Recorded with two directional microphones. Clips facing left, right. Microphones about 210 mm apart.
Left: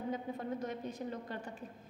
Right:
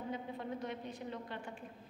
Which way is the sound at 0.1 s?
45° left (ahead or behind).